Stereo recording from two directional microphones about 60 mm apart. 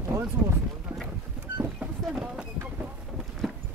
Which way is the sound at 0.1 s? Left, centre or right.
Right.